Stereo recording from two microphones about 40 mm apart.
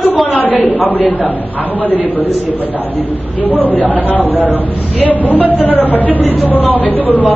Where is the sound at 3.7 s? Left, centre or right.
Left.